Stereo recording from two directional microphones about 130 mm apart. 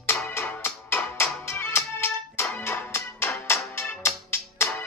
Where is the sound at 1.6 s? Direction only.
10° left (ahead or behind).